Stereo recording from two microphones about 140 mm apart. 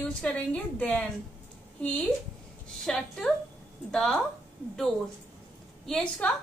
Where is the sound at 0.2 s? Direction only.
10° left (ahead or behind).